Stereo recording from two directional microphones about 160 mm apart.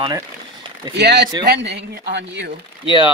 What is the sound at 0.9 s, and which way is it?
A man's voice, 90° right.